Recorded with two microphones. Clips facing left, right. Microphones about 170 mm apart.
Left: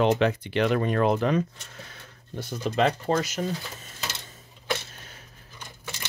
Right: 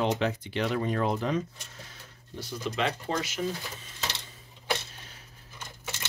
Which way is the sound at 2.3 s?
50° left (ahead or behind).